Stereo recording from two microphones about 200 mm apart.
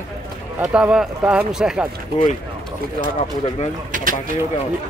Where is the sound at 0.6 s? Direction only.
5° right (ahead or behind).